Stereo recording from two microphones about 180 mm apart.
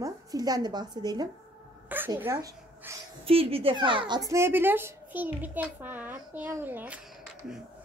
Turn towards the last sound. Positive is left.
turn(degrees=-10)  # may be behind; listen again after turning